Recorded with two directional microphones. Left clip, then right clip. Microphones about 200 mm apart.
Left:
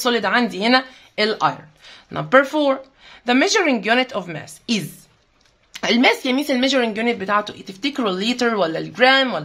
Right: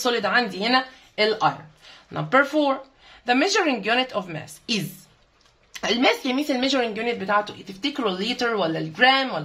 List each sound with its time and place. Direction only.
0.0 s speech: 35° left (ahead or behind)